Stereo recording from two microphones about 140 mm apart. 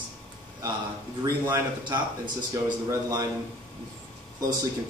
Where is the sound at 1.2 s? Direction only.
30° right (ahead or behind).